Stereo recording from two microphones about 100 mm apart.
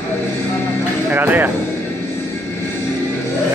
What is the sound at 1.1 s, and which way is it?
Speech, 20° right (ahead or behind).